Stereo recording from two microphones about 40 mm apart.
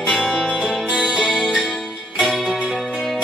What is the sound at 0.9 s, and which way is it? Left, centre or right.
Music, centre.